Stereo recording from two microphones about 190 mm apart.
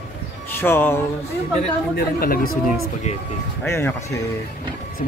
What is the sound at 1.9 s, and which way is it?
Speech, 50° left (ahead or behind).